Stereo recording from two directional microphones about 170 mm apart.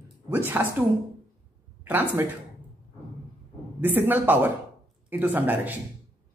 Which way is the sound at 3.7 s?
10° right (ahead or behind).